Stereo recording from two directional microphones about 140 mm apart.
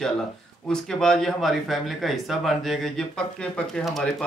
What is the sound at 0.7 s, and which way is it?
Speech, 5° left (ahead or behind).